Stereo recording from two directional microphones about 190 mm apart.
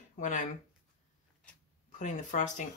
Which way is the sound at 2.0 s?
40° left (ahead or behind).